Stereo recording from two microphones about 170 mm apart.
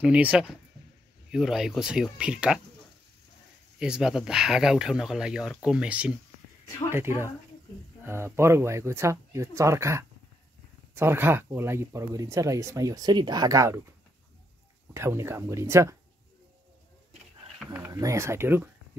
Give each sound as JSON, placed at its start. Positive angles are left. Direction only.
{"t": 0.0, "sound": "speech", "side_deg": -10}
{"t": 3.8, "sound": "speech", "side_deg": -5}
{"t": 15.0, "sound": "speech", "side_deg": -15}
{"t": 17.7, "sound": "speech", "side_deg": -15}